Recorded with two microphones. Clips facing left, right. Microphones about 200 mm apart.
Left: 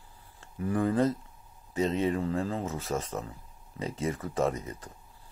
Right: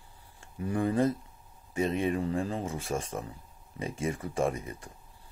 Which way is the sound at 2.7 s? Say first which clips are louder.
Left 1 dB; 15° right (ahead or behind).